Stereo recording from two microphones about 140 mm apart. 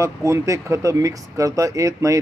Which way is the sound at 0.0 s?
20° right (ahead or behind).